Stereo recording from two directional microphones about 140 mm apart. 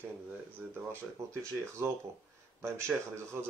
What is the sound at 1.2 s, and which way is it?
Speech, 20° right (ahead or behind).